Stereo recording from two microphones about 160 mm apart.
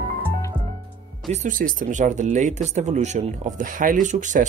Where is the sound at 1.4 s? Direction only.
55° right (ahead or behind).